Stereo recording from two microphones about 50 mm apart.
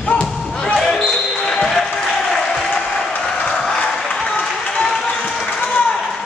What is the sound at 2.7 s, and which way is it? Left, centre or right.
Applause, centre.